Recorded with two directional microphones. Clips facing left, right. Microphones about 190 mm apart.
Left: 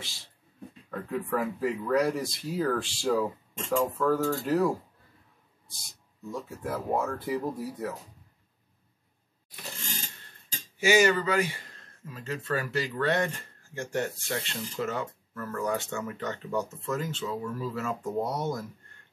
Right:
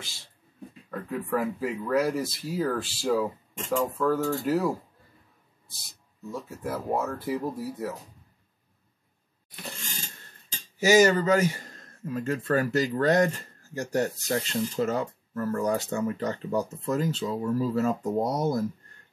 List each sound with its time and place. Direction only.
0.8 s speech: 5° right (ahead or behind)
6.3 s speech: 5° right (ahead or behind)
10.8 s speech: 40° right (ahead or behind)